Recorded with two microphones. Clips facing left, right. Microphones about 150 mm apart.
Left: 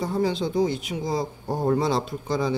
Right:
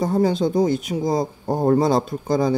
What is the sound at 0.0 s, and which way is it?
Speech, 45° right (ahead or behind).